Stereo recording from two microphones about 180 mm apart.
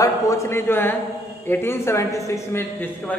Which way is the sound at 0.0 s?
20° left (ahead or behind).